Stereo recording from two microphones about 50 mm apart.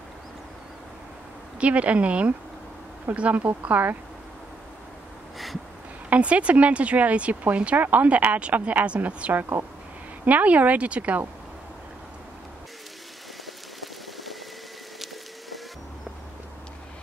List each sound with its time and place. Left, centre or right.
1.6 s speech: right
6.0 s speech: right